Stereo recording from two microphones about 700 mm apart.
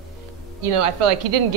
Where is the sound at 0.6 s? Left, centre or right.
Right.